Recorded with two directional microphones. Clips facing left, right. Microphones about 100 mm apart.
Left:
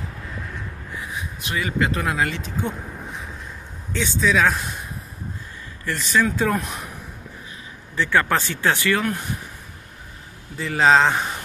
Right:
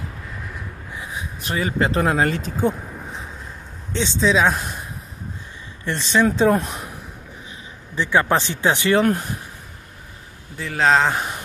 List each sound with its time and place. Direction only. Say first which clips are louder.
1.4 s speech: right 2 dB; 35° right (ahead or behind)
3.9 s speech: right 2 dB; 25° right (ahead or behind)
5.9 s speech: right 2 dB; 25° right (ahead or behind)
7.9 s speech: right 2 dB; 20° right (ahead or behind)
10.6 s speech: left 1 dB; centre (ahead or behind)